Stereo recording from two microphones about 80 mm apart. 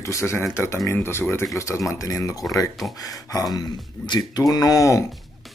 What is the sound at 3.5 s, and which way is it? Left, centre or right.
Speech, left.